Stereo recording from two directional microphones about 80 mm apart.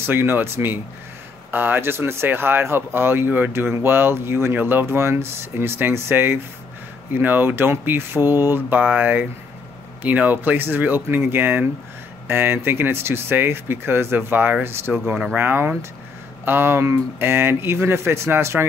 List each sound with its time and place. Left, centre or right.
0.0 s speech: right